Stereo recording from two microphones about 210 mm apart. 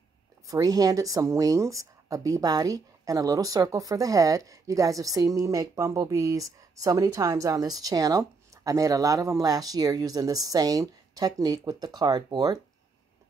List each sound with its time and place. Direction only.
0.5 s speech: 15° right (ahead or behind)